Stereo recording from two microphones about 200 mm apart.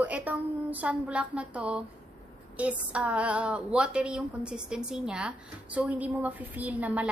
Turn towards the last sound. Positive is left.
turn(degrees=-5)  # may be behind; listen again after turning